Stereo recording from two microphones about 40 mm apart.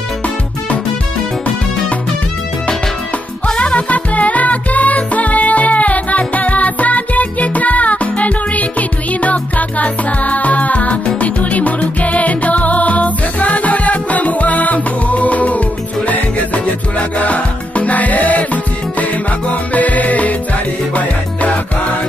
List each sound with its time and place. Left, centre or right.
3.4 s music: left